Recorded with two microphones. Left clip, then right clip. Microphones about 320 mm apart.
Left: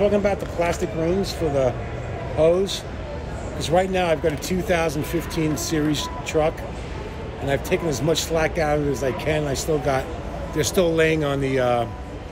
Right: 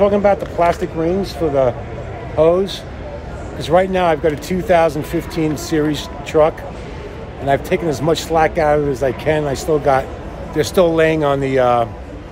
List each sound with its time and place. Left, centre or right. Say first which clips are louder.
0.0 s speech: right 7 dB; right